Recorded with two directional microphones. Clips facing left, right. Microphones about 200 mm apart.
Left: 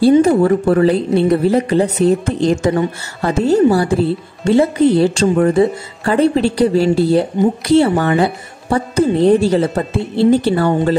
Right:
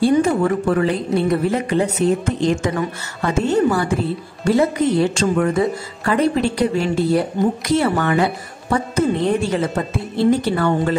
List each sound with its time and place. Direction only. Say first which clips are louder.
0.2 s speech: left 5 dB; 35° left (ahead or behind)